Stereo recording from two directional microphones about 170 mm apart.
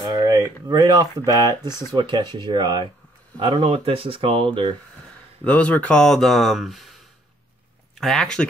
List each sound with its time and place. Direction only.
0.1 s a sound: 25° right (ahead or behind)
0.7 s speech: 25° right (ahead or behind)
5.4 s speech: 10° left (ahead or behind)
8.0 s speech: centre (ahead or behind)